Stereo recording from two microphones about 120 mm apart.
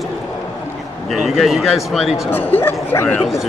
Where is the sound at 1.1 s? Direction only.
Centre (ahead or behind).